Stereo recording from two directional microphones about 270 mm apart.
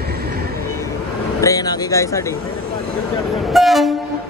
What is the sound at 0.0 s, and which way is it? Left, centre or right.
Vehicle, right.